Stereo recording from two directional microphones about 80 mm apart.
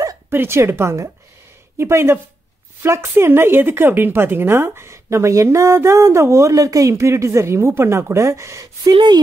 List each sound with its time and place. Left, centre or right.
0.3 s speech: right
8.9 s speech: right